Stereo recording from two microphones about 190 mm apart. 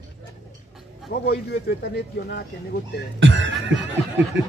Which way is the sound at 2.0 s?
60° left (ahead or behind).